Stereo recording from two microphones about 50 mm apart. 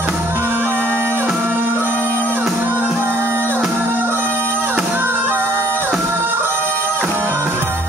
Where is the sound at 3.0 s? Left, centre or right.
Right.